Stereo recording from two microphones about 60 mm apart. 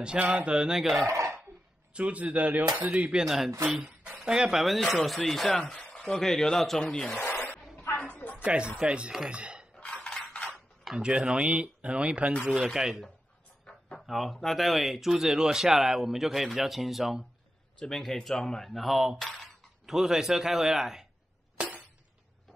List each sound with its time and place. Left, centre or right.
0.0 s speech: centre
1.0 s speech: right
2.0 s a man's voice: right
3.3 s speech: centre
5.5 s speech: centre
6.1 s speech: centre
7.2 s a sound: left
8.5 s speech: centre
9.8 s mechanisms: centre
11.0 s speech: centre
12.6 s speech: centre
13.7 s a sound: centre
14.0 s speech: centre
17.7 s speech: centre